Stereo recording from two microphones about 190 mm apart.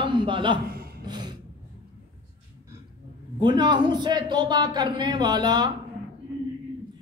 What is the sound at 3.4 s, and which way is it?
A man's voice, 25° right (ahead or behind).